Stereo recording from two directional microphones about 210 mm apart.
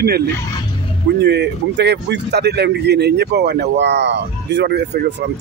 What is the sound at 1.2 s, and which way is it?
Speech, 55° right (ahead or behind).